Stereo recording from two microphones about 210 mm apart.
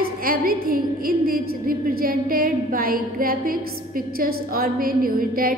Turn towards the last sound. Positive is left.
turn(degrees=-45)  # may be behind; listen again after turning